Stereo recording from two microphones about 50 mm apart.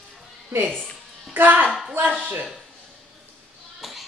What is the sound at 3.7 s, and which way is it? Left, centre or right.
Child singing, centre.